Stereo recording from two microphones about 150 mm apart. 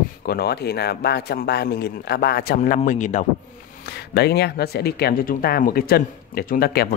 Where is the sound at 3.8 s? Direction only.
90° left.